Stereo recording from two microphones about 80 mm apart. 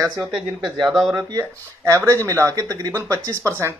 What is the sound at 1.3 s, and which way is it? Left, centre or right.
Speech, right.